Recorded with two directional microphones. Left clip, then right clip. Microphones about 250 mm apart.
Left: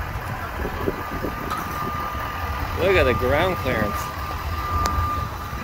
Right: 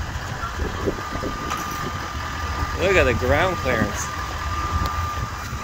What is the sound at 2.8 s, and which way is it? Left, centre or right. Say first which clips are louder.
Speech: even; centre.